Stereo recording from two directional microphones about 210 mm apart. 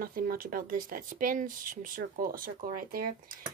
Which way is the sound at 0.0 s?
45° right (ahead or behind).